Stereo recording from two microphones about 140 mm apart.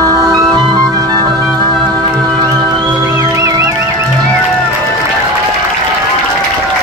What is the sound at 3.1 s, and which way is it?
Music, 25° right (ahead or behind).